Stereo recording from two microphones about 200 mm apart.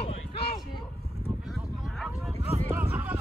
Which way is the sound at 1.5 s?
Centre (ahead or behind).